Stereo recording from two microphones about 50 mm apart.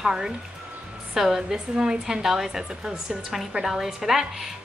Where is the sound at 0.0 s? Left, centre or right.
Centre.